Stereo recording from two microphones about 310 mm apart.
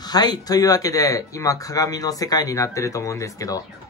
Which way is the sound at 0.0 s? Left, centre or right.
Centre.